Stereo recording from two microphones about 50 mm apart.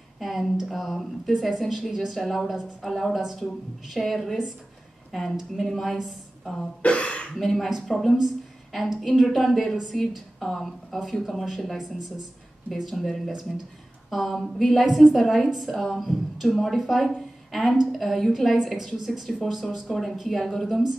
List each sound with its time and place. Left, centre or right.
0.2 s a woman's voice: centre
6.8 s speech: left
7.3 s a woman's voice: centre